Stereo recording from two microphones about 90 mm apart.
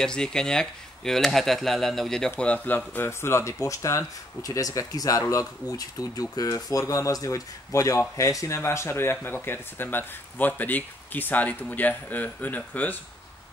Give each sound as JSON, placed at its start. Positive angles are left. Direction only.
{"t": 0.0, "sound": "speech", "side_deg": 10}
{"t": 2.3, "sound": "speech", "side_deg": 20}